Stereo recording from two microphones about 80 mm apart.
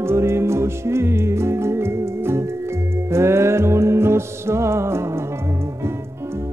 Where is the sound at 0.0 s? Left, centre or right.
Right.